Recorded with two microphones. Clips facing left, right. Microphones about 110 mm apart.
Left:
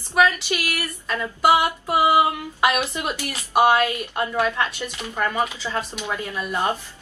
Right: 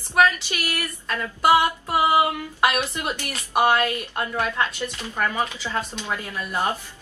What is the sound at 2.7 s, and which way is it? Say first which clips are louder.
A woman's voice: left 2 dB; 10° left (ahead or behind).